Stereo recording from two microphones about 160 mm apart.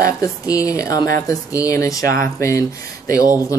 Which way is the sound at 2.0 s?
65° right (ahead or behind).